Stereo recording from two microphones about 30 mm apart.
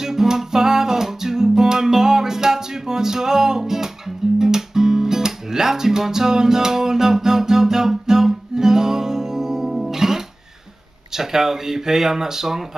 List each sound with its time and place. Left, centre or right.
0.0 s music: centre
11.1 s speech: centre